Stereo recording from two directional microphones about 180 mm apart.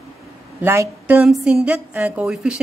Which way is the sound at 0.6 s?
15° right (ahead or behind).